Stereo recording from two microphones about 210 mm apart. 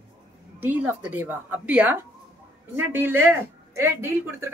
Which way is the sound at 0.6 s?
10° right (ahead or behind).